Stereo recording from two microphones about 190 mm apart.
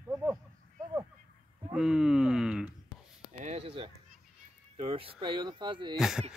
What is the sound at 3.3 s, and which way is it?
Speech, 35° right (ahead or behind).